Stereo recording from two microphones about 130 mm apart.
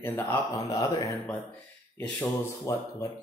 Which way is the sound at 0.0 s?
20° left (ahead or behind).